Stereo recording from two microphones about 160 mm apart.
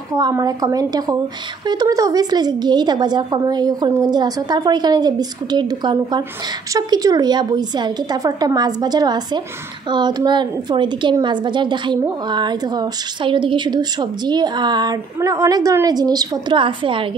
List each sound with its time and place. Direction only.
0.1 s a woman's voice: 25° right (ahead or behind)